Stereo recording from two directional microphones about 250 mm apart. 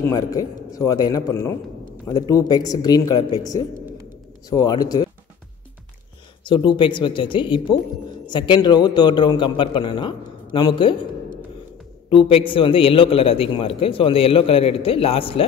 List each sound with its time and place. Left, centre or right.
0.1 s a man's voice: centre
6.4 s a man's voice: centre
12.1 s a man's voice: left